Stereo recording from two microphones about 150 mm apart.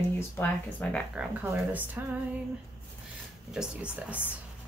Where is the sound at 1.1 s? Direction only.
10° right (ahead or behind).